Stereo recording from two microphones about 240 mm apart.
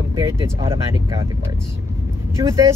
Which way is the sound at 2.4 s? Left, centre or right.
Centre.